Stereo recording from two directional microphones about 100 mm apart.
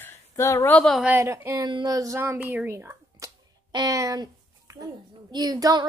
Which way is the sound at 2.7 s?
25° right (ahead or behind).